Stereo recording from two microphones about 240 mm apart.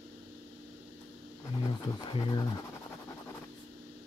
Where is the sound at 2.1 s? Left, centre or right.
Centre.